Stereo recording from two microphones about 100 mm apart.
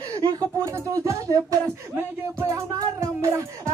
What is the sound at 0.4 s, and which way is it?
Music, 25° right (ahead or behind).